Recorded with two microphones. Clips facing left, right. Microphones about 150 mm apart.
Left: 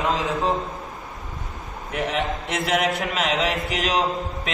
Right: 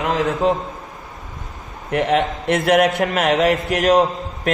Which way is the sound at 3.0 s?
50° right (ahead or behind).